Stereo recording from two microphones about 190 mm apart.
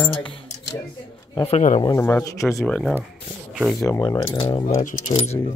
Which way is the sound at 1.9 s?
10° left (ahead or behind).